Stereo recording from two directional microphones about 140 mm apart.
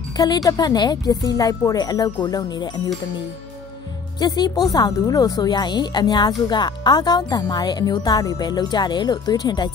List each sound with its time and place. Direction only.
0.2 s speech: 25° left (ahead or behind)
4.2 s speech: 30° left (ahead or behind)